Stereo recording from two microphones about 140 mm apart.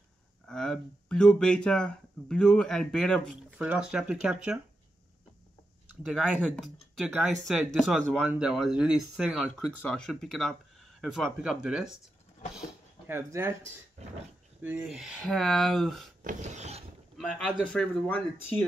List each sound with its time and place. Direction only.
0.5 s speech: 5° left (ahead or behind)
3.5 s speech: 10° right (ahead or behind)
6.1 s speech: centre (ahead or behind)
13.0 s speech: 15° right (ahead or behind)
14.6 s speech: 10° right (ahead or behind)
16.3 s filing: 55° right (ahead or behind)
17.6 s speech: 10° left (ahead or behind)